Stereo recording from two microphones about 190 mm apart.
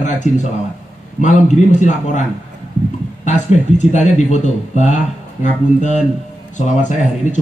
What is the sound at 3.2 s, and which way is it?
Speech, 40° left (ahead or behind).